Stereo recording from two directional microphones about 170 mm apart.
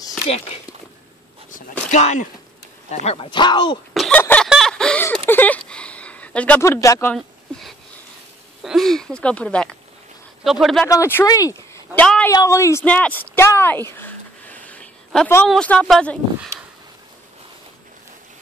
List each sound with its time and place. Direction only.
1.5 s speech: 45° left (ahead or behind); by 3.8 s 25° left (ahead or behind)
3.9 s a sound: centre (ahead or behind)
4.2 s a sound: 10° left (ahead or behind)
7.5 s speech: 5° left (ahead or behind)
10.9 s speech: 15° left (ahead or behind)
12.3 s speech: 20° left (ahead or behind)